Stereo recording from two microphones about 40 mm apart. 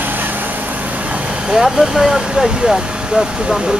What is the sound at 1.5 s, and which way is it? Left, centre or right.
Speech, centre.